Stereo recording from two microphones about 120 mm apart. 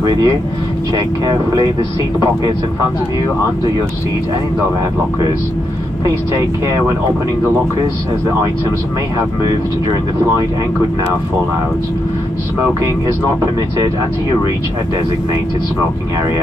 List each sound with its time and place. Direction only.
0.0 s speech: 35° right (ahead or behind)